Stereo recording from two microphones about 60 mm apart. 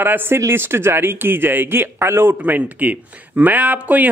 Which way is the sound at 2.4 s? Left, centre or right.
Right.